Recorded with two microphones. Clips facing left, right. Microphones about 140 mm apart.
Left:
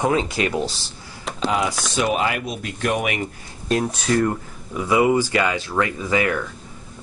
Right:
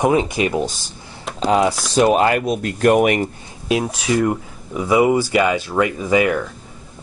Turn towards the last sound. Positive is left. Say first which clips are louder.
# right 5 dB
turn(degrees=-15)  # may be behind; listen again after turning